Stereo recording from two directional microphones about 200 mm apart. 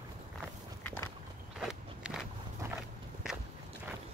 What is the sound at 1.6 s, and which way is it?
Walk, 5° right (ahead or behind).